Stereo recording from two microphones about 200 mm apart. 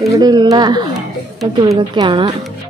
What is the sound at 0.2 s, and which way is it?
A woman's voice, 20° right (ahead or behind).